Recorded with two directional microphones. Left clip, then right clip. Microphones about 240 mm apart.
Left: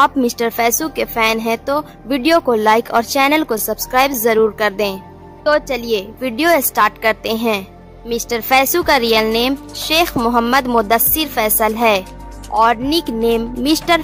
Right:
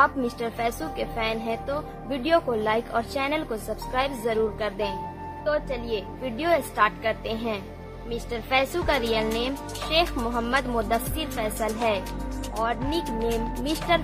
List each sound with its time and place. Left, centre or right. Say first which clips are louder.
0.0 s a woman's voice: left 9 dB; left